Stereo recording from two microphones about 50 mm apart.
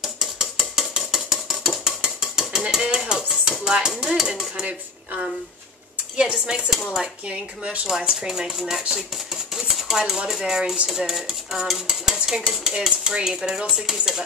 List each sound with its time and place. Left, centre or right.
0.0 s a sound: centre
1.9 s cutlery: centre
3.9 s speech: centre
4.6 s speech: right; by 8.8 s centre
8.9 s dishes: centre
12.3 s speech: centre